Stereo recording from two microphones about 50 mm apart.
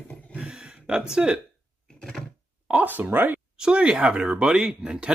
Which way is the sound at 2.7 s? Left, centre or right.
Right.